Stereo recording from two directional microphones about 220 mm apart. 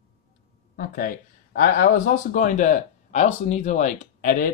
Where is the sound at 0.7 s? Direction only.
40° left (ahead or behind).